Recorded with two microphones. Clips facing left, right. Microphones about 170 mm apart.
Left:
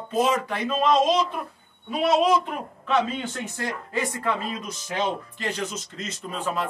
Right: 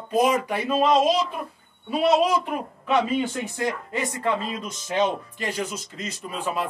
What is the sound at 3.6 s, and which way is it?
Speech, 20° right (ahead or behind).